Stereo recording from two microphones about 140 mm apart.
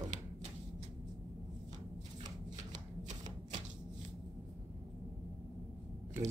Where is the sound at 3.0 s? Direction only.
55° right (ahead or behind).